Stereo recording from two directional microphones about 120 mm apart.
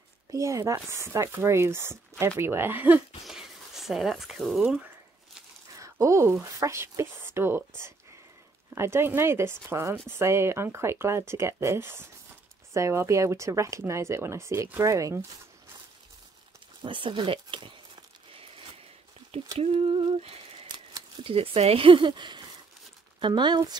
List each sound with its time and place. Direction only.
0.3 s speech: 25° right (ahead or behind)
3.3 s speech: centre (ahead or behind)
5.8 s a sound: 25° right (ahead or behind)
6.4 s speech: 25° right (ahead or behind)
16.8 s a sound: 45° right (ahead or behind)
21.2 s speech: 55° right (ahead or behind); by 23.8 s 40° right (ahead or behind)